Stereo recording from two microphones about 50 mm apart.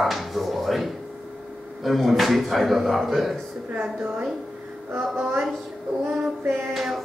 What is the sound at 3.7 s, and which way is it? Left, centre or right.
Speech, right.